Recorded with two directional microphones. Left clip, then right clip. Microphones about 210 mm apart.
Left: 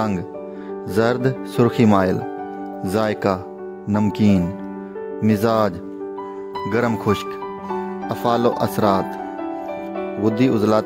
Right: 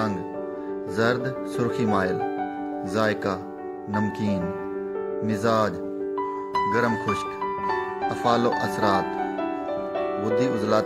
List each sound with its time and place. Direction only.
0.9 s speech: 45° left (ahead or behind)
6.7 s speech: 40° left (ahead or behind)
10.2 s speech: 35° left (ahead or behind)